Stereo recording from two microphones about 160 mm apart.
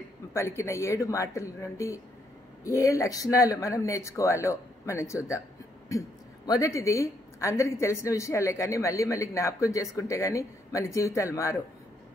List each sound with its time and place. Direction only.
0.3 s a woman's voice: 15° left (ahead or behind)